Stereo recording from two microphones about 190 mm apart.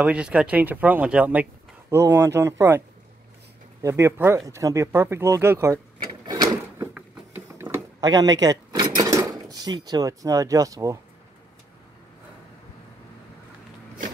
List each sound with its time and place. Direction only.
0.0 s speech: 5° right (ahead or behind)
3.8 s speech: 15° right (ahead or behind)
6.2 s a sound: 20° right (ahead or behind)